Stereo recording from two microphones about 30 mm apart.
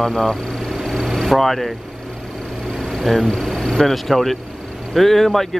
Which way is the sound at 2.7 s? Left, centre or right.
Centre.